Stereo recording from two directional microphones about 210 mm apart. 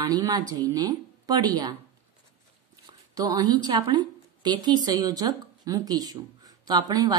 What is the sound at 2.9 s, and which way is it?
A woman's voice, 20° right (ahead or behind).